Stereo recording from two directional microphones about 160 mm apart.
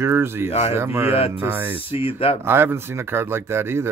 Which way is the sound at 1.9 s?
35° left (ahead or behind).